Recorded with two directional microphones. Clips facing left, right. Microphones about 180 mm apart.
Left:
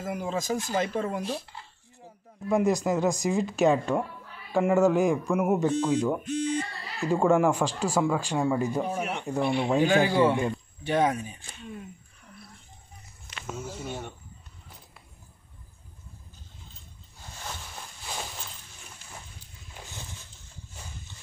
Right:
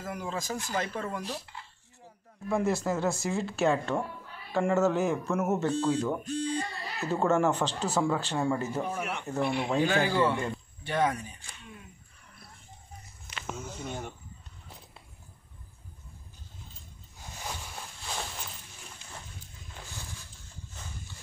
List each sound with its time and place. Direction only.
0.0 s speech: 20° left (ahead or behind)
2.4 s speech: 15° left (ahead or behind)
13.6 s speech: 5° left (ahead or behind)
17.4 s boat: 10° right (ahead or behind)
18.0 s a sound: 5° left (ahead or behind)